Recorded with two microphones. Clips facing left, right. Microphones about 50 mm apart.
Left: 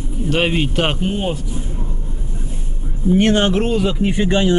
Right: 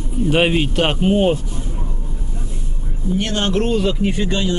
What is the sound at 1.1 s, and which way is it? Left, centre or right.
Speech, right.